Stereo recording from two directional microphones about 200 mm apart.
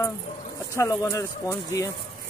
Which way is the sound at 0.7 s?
15° left (ahead or behind).